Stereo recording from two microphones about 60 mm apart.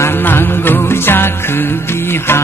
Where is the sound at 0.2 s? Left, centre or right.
Left.